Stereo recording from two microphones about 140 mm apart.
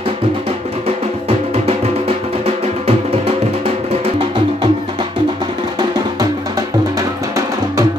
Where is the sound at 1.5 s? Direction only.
45° right (ahead or behind).